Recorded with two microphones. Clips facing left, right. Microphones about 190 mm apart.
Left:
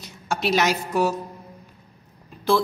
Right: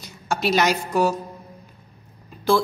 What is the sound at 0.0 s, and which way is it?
A woman's voice, centre (ahead or behind).